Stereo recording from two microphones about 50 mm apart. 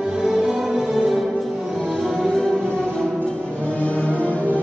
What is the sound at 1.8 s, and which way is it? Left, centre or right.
Music, centre.